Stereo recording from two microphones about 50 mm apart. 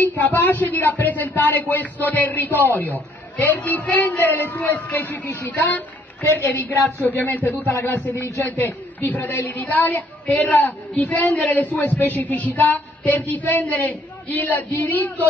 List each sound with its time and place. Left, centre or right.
0.0 s speech: left